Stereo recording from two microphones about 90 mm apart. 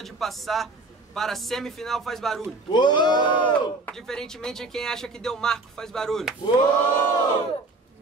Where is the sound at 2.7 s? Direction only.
55° left (ahead or behind).